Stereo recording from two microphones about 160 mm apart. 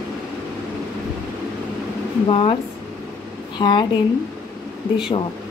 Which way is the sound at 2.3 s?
35° left (ahead or behind).